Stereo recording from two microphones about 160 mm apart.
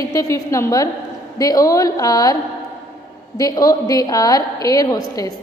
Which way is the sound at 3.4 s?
20° left (ahead or behind).